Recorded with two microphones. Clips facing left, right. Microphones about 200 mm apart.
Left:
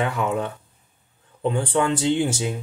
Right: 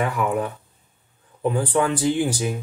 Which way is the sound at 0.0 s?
25° left (ahead or behind).